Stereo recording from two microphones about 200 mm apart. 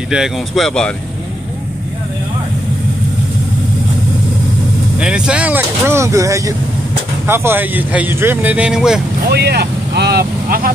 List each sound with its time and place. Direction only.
0.1 s speech: centre (ahead or behind)
4.9 s speech: 5° right (ahead or behind)
9.3 s speech: 55° right (ahead or behind)